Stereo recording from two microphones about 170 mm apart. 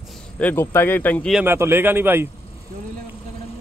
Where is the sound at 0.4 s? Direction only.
10° left (ahead or behind).